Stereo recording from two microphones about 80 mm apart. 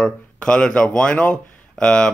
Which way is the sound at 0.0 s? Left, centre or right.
Centre.